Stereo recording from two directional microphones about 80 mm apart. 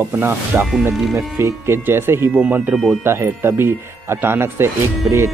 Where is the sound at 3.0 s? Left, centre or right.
Right.